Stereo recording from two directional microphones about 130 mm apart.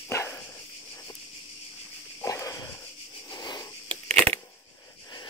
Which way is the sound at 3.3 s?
30° left (ahead or behind).